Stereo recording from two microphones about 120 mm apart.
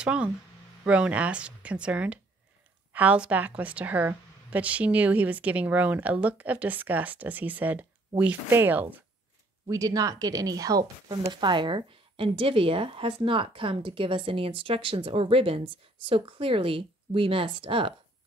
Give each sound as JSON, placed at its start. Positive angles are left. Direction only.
{"t": 0.0, "sound": "a woman's voice", "side_deg": -10}
{"t": 9.7, "sound": "a woman's voice", "side_deg": -30}